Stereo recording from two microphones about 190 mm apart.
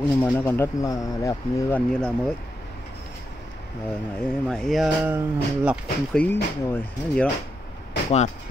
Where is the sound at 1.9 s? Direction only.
5° left (ahead or behind).